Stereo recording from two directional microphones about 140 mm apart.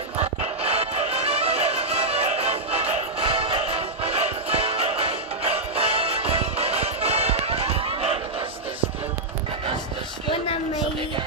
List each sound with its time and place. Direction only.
0.2 s music: 45° right (ahead or behind)